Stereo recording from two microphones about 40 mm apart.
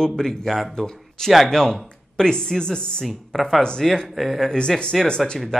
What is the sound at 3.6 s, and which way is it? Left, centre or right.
Speech, left.